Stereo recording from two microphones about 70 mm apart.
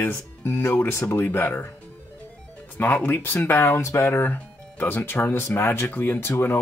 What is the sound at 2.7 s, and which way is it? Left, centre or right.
Speech, left.